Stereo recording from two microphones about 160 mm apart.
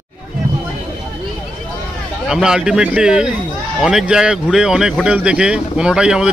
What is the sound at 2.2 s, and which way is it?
A man's voice, 5° right (ahead or behind).